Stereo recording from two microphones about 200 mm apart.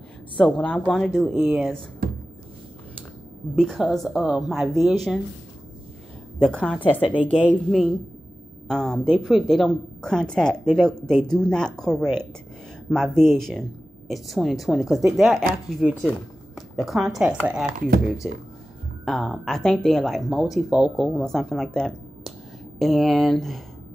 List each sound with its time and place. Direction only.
0.4 s speech: 5° left (ahead or behind)
3.5 s speech: centre (ahead or behind)
6.4 s speech: 5° left (ahead or behind)
7.0 s speech: 5° right (ahead or behind)
17.7 s speech: 45° right (ahead or behind)
19.0 s speech: centre (ahead or behind)